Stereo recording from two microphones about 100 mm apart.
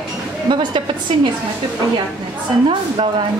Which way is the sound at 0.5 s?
50° right (ahead or behind).